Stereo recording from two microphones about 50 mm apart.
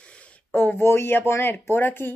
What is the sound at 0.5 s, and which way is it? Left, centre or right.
Speech, left.